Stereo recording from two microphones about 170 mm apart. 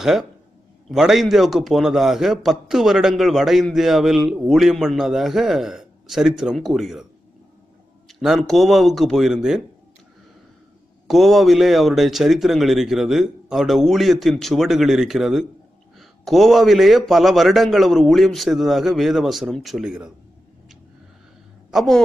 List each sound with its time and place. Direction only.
0.0 s speech: centre (ahead or behind)
8.1 s speech: centre (ahead or behind)
11.1 s speech: centre (ahead or behind)
21.6 s a woman's voice: centre (ahead or behind)